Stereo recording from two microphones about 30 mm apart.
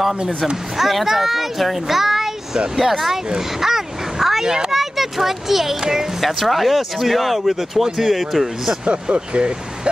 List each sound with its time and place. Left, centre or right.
0.7 s speech: centre
3.3 s a sound: centre
4.6 s a child's voice: centre
9.1 s speech: right